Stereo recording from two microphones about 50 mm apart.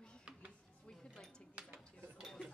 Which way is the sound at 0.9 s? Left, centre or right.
Centre.